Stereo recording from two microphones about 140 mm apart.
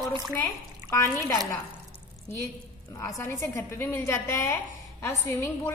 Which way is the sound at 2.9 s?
20° left (ahead or behind).